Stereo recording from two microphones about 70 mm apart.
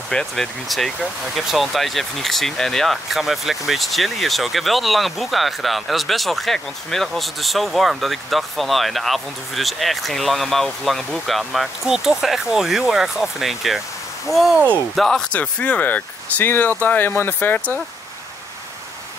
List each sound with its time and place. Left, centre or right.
0.1 s speech: centre
15.3 s speech: centre